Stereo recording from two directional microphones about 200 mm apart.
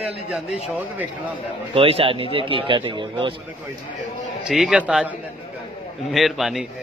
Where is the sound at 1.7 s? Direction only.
30° right (ahead or behind).